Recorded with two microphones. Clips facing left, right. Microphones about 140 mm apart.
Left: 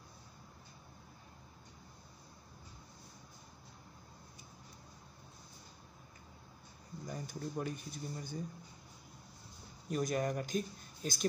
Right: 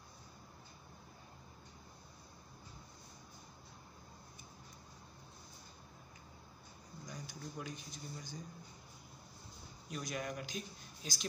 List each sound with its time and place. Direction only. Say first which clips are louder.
7.1 s speech: left 6 dB; 50° left (ahead or behind)
9.8 s speech: left 8 dB; 45° left (ahead or behind)